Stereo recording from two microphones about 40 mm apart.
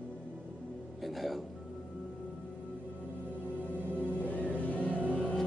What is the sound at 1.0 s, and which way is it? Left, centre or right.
Speech, centre.